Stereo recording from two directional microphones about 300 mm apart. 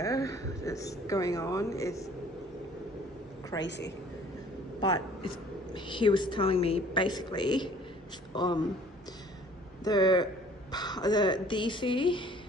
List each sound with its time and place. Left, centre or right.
0.0 s a woman's voice: centre
3.6 s a woman's voice: left
4.7 s a woman's voice: centre
9.8 s a woman's voice: centre